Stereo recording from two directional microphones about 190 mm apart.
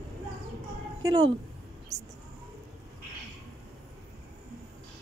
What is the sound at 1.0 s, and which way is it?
Speech, 25° right (ahead or behind).